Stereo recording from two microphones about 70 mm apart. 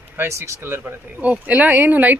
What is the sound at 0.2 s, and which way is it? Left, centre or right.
Speech, right.